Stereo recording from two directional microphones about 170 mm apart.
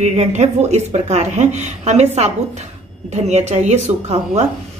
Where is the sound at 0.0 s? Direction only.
40° right (ahead or behind).